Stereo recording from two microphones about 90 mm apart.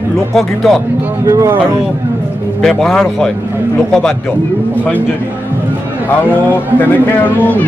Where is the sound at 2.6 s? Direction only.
5° left (ahead or behind).